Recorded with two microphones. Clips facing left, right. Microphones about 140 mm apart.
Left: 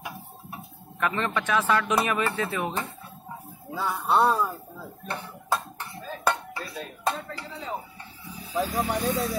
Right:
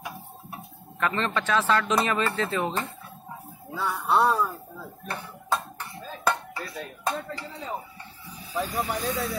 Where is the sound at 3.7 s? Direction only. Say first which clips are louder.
Even; 5° left (ahead or behind).